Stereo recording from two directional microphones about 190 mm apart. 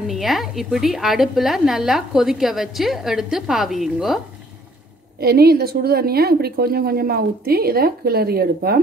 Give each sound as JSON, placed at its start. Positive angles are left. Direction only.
{"t": 0.0, "sound": "a woman's voice", "side_deg": 0}
{"t": 5.2, "sound": "a woman's voice", "side_deg": -55}